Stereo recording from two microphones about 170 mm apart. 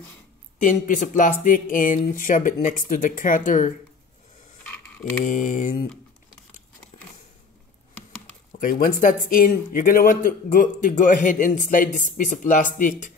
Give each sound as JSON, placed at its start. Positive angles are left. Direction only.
{"t": 0.6, "sound": "speech", "side_deg": 50}
{"t": 5.2, "sound": "speech", "side_deg": 50}
{"t": 8.5, "sound": "speech", "side_deg": 50}